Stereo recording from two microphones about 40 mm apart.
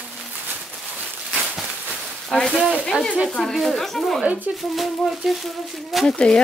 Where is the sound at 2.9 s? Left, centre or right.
Right.